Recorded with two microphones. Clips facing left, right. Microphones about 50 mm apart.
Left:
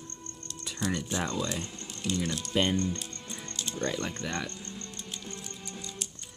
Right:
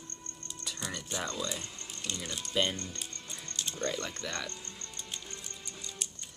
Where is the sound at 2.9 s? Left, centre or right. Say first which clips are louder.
Left 4 dB; centre.